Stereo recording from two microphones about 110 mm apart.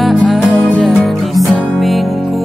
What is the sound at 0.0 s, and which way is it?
Music, centre (ahead or behind).